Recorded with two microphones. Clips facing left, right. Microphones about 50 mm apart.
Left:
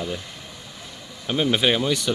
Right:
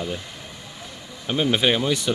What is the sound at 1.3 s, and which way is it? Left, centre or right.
Speech, centre.